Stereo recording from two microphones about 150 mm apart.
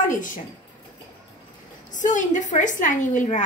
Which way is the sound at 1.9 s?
55° left (ahead or behind).